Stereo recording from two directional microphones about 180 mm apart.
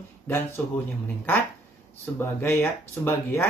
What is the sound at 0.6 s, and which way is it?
Speech, 10° left (ahead or behind).